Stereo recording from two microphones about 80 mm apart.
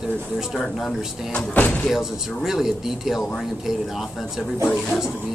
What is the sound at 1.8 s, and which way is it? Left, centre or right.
Speech, centre.